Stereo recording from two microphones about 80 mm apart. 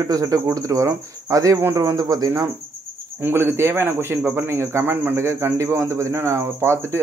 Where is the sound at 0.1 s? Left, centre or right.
Right.